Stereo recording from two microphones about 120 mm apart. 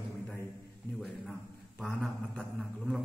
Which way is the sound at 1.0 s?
Centre (ahead or behind).